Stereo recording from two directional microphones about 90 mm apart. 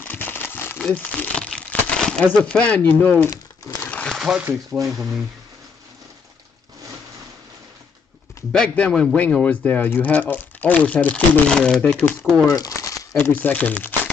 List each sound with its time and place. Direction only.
0.0 s crumpling: 20° left (ahead or behind)
0.9 s speech: 15° left (ahead or behind)
3.9 s a sound: 10° left (ahead or behind)
4.2 s speech: 10° right (ahead or behind)
8.5 s speech: 10° left (ahead or behind)
12.4 s crumpling: 40° left (ahead or behind)
13.2 s speech: 20° left (ahead or behind)